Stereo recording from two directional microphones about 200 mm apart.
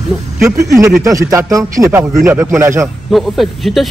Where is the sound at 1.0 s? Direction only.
15° right (ahead or behind).